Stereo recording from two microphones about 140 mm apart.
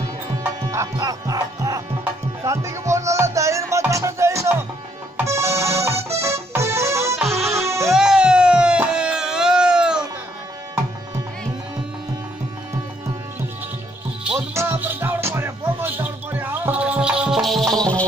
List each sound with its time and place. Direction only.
0.4 s music: 20° right (ahead or behind)
5.1 s accordion: 20° right (ahead or behind)
7.5 s music: 20° right (ahead or behind)
7.9 s a sound: 5° right (ahead or behind)
14.5 s music: 20° right (ahead or behind); by 18.0 s 10° left (ahead or behind)